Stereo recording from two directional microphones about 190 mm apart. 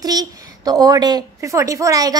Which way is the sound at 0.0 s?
20° right (ahead or behind).